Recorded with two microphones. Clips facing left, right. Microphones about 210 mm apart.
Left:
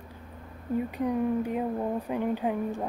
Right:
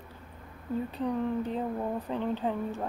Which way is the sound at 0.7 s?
10° left (ahead or behind).